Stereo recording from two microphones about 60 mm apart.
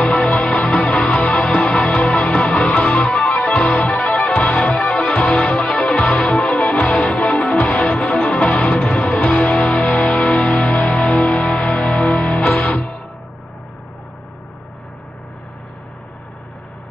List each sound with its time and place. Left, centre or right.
0.0 s music: centre